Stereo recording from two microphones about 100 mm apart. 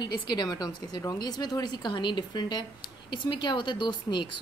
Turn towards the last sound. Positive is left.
turn(degrees=50)  # may be behind; listen again after turning